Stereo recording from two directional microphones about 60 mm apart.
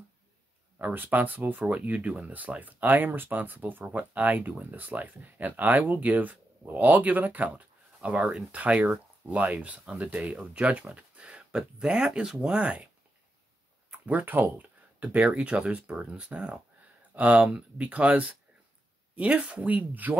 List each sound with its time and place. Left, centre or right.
0.7 s speech: right
14.0 s speech: right